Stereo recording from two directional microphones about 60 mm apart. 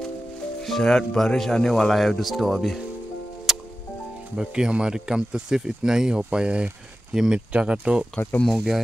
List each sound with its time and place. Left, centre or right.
0.7 s speech: centre
3.5 s music: centre
4.4 s speech: centre
8.5 s speech: centre